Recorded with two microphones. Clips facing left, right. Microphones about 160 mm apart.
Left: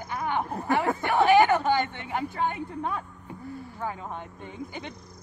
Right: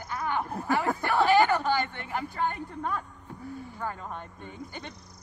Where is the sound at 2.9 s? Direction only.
5° left (ahead or behind).